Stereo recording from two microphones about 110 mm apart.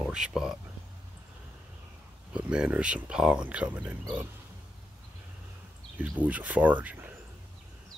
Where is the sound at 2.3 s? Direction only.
10° right (ahead or behind).